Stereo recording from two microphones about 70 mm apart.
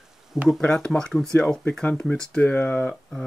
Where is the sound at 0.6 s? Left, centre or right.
Centre.